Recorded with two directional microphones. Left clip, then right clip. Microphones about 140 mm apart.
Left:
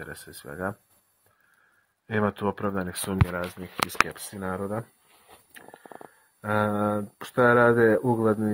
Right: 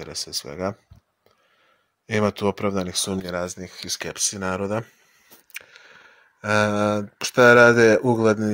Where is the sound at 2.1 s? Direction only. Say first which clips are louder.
Right 5 dB; 25° right (ahead or behind).